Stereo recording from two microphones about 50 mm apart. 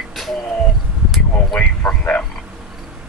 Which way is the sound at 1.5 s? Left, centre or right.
Left.